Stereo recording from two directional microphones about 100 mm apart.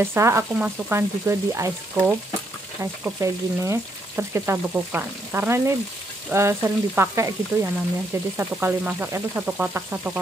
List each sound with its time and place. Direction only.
0.0 s frying: 25° right (ahead or behind)
0.6 s speech: 15° right (ahead or behind)
0.9 s frying: 25° right (ahead or behind)
3.2 s frying: 30° right (ahead or behind)
8.4 s speech: 20° right (ahead or behind)